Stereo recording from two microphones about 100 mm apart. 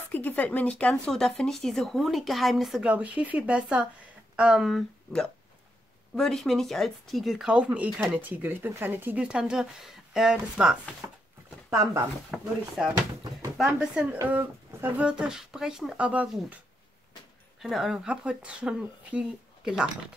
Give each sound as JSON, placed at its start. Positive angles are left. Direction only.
{"t": 0.1, "sound": "speech", "side_deg": 15}
{"t": 2.9, "sound": "speech", "side_deg": -15}
{"t": 9.2, "sound": "speech", "side_deg": -10}
{"t": 11.7, "sound": "speech", "side_deg": -30}
{"t": 12.3, "sound": "speech", "side_deg": -5}
{"t": 14.2, "sound": "speech", "side_deg": -20}
{"t": 15.0, "sound": "speech", "side_deg": -10}
{"t": 17.6, "sound": "speech", "side_deg": 0}